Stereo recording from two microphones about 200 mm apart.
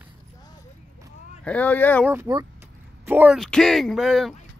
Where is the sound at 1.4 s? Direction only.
5° left (ahead or behind).